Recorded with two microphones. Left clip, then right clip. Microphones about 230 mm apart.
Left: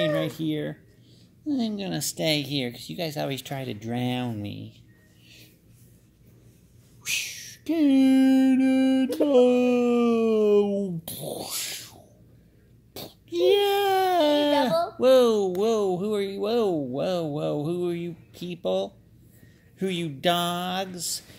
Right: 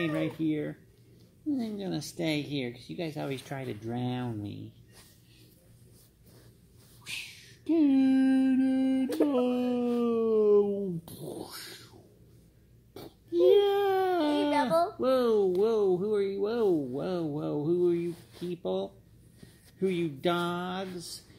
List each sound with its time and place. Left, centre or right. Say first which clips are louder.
0.0 s speech: left 5 dB; left
7.0 s music: left 10 dB; left
9.3 s speech: left 10 dB; left
12.9 s speech: even; left